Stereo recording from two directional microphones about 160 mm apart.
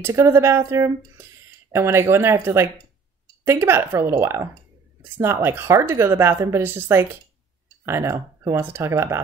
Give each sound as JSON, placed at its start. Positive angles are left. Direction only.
{"t": 0.0, "sound": "a woman's voice", "side_deg": -15}